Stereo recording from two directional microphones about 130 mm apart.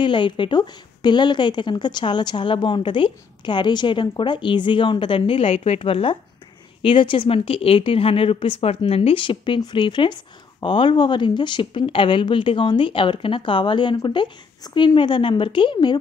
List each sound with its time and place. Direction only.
0.0 s a woman's voice: 40° left (ahead or behind)